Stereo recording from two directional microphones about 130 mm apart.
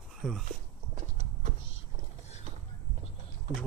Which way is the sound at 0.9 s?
70° right (ahead or behind).